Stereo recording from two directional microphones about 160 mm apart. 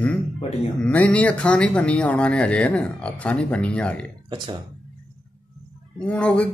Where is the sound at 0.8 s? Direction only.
10° left (ahead or behind).